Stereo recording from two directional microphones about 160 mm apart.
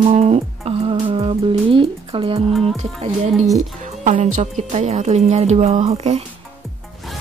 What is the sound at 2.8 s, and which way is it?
Speech, 45° right (ahead or behind).